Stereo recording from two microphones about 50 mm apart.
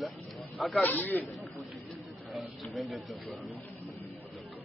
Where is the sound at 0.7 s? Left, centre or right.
Left.